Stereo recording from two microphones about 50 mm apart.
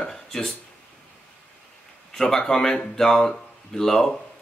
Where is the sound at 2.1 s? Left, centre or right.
Centre.